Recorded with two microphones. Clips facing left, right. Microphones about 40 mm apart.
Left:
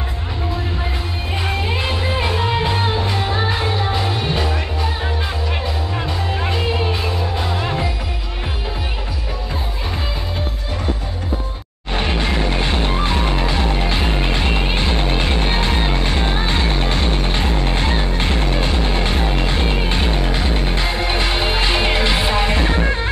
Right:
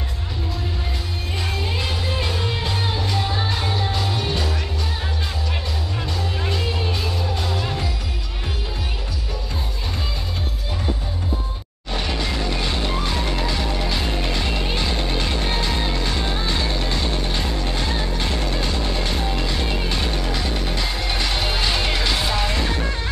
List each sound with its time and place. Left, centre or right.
1.4 s music: left
11.9 s music: left